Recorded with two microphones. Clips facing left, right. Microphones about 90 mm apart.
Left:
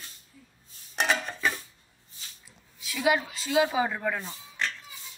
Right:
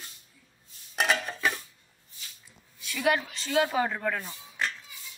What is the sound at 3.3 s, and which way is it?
Speech, 5° left (ahead or behind).